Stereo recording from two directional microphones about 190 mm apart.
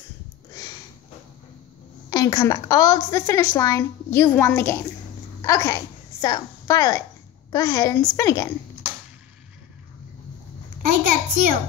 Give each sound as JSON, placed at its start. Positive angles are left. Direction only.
{"t": 0.6, "sound": "sniff", "side_deg": 20}
{"t": 2.0, "sound": "a woman's voice", "side_deg": 20}
{"t": 10.8, "sound": "a sound", "side_deg": -45}